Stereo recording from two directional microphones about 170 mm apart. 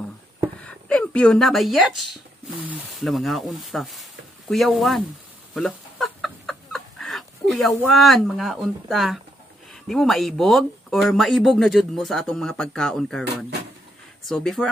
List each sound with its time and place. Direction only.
0.7 s speech: 5° left (ahead or behind)
5.5 s chicken: centre (ahead or behind)
9.8 s speech: centre (ahead or behind)